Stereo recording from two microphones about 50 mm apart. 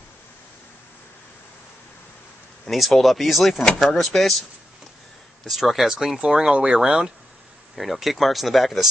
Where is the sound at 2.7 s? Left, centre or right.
Centre.